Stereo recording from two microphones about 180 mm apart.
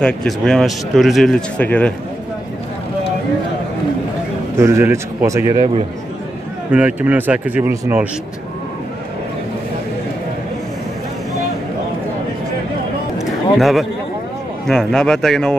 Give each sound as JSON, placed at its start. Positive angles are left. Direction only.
{"t": 0.0, "sound": "speech", "side_deg": 5}
{"t": 4.6, "sound": "speech", "side_deg": -15}
{"t": 6.7, "sound": "speech", "side_deg": -10}
{"t": 13.2, "sound": "a sound", "side_deg": 0}
{"t": 14.7, "sound": "speech", "side_deg": 5}